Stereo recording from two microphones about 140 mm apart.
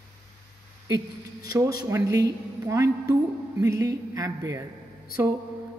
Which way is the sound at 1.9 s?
20° right (ahead or behind).